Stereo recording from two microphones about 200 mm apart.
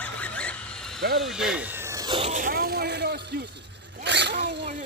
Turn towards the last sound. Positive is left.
turn(degrees=-60)  # may be behind; listen again after turning